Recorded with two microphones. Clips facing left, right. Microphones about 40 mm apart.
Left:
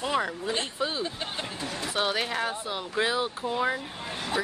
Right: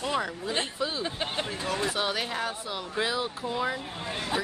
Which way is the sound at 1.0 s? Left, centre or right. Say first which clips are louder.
Right 2 dB; centre.